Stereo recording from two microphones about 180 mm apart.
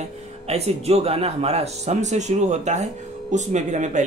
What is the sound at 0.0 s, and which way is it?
Speech, 35° right (ahead or behind).